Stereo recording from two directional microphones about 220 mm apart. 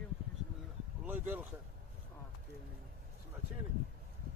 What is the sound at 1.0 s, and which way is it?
Speech, 10° right (ahead or behind).